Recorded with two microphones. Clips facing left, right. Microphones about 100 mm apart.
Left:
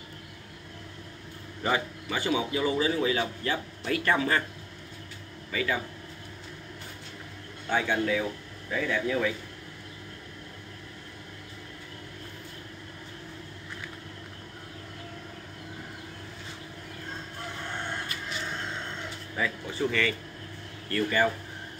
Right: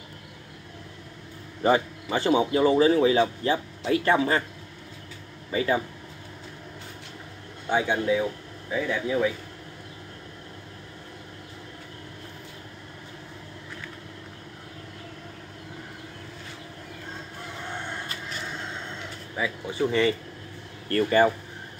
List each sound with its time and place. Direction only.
1.6 s a man's voice: 30° right (ahead or behind)
5.5 s a man's voice: 30° right (ahead or behind)
7.7 s speech: 20° right (ahead or behind)
19.3 s a man's voice: 15° right (ahead or behind); by 21.3 s 30° right (ahead or behind)